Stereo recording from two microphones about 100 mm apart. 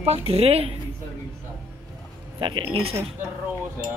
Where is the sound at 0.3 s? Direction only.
90° right.